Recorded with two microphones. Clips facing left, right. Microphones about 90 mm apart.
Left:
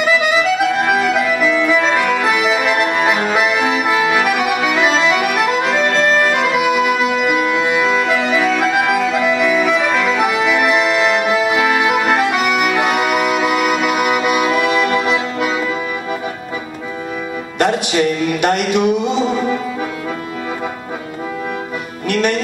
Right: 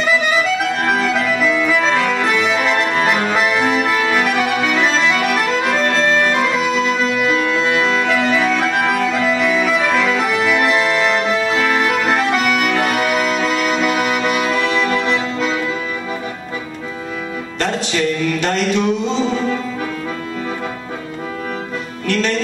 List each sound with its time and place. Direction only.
0.0 s accordion: 5° left (ahead or behind)
17.6 s music: 15° left (ahead or behind)
22.0 s music: 15° left (ahead or behind)